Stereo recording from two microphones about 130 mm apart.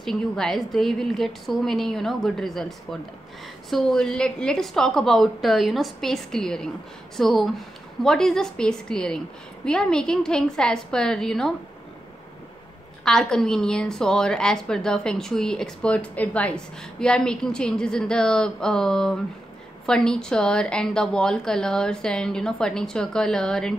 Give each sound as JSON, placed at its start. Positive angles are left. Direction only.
{"t": 0.0, "sound": "a woman's voice", "side_deg": 0}
{"t": 13.0, "sound": "a woman's voice", "side_deg": 5}